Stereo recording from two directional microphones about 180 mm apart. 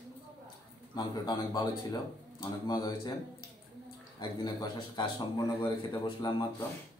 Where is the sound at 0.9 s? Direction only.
25° left (ahead or behind).